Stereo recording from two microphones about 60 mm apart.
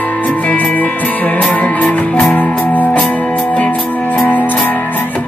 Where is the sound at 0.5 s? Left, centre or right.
Left.